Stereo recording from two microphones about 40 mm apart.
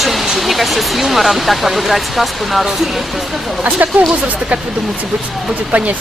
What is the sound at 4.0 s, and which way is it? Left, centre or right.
Speech, right.